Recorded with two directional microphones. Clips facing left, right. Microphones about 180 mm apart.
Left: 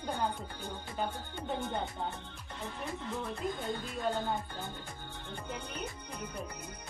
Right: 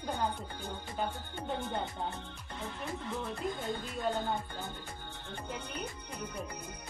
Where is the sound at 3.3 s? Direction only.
Centre (ahead or behind).